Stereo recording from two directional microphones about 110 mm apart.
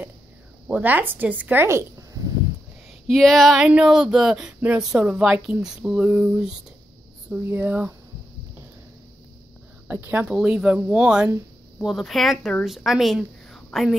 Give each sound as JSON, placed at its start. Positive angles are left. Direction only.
{"t": 0.7, "sound": "speech", "side_deg": -15}
{"t": 3.1, "sound": "speech", "side_deg": 5}
{"t": 9.8, "sound": "speech", "side_deg": -20}
{"t": 10.3, "sound": "speech", "side_deg": -5}